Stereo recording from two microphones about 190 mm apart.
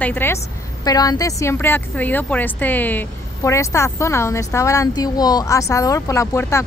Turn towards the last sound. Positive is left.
turn(degrees=15)  # may be behind; listen again after turning